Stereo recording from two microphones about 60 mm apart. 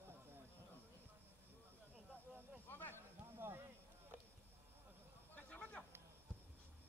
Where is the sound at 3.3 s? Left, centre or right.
Right.